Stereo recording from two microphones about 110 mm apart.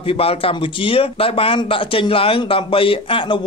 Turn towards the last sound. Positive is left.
turn(degrees=55)  # may be behind; listen again after turning